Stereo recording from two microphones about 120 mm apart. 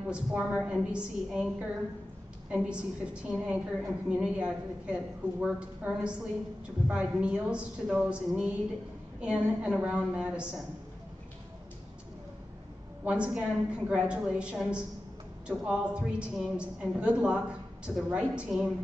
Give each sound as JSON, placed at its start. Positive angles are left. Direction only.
{"t": 0.1, "sound": "a woman's voice", "side_deg": -5}
{"t": 13.0, "sound": "a woman's voice", "side_deg": -10}